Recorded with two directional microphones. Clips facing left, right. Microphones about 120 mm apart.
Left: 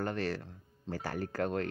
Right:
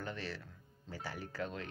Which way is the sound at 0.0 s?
50° left (ahead or behind).